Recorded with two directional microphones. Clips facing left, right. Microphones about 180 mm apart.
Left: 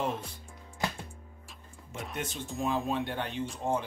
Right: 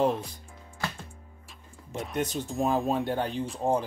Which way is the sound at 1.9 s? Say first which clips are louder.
Right 7 dB; 35° right (ahead or behind).